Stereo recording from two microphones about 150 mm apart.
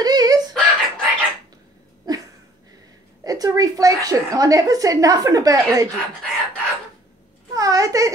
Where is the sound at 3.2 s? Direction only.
25° right (ahead or behind).